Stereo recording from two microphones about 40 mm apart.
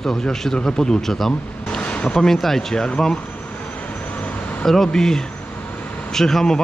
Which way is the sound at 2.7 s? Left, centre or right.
Centre.